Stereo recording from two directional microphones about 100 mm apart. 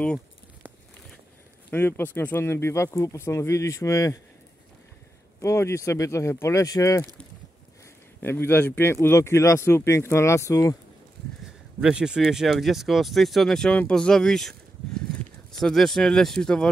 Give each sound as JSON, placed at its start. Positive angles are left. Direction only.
{"t": 1.7, "sound": "speech", "side_deg": 20}
{"t": 5.4, "sound": "speech", "side_deg": 30}
{"t": 8.2, "sound": "speech", "side_deg": 20}
{"t": 11.8, "sound": "speech", "side_deg": -10}
{"t": 15.6, "sound": "speech", "side_deg": 5}